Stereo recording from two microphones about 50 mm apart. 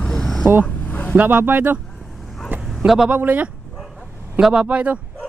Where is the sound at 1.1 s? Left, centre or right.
Right.